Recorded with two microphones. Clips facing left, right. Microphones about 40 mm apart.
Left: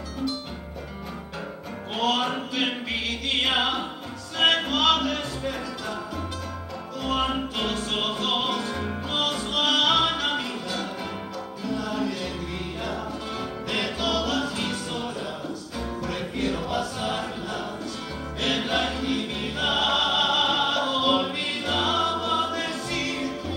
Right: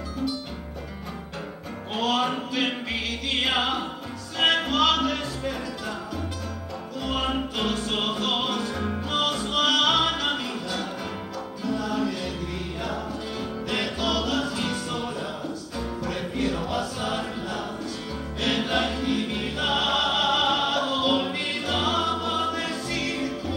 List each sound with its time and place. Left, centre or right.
2.0 s music: centre
7.1 s music: centre
11.6 s music: centre
13.7 s music: centre
18.4 s music: centre